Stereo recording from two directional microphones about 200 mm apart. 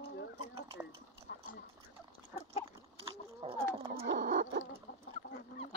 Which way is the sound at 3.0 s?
25° right (ahead or behind).